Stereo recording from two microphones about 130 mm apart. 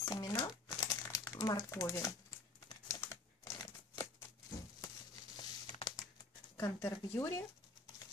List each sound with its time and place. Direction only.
0.0 s crumpling: 30° left (ahead or behind)
1.2 s speech: 30° left (ahead or behind)
2.7 s typing: 25° left (ahead or behind)
3.9 s crumpling: 25° left (ahead or behind)
6.5 s speech: 20° left (ahead or behind)